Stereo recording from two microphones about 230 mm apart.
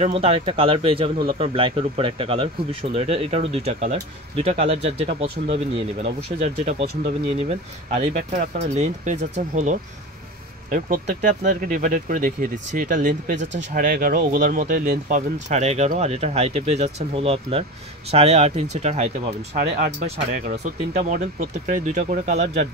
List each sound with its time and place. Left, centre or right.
0.0 s speech: right
20.4 s speech: right